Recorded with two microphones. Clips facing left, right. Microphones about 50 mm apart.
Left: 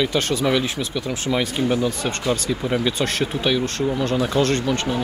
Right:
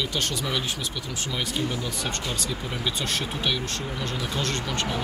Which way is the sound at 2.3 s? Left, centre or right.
Left.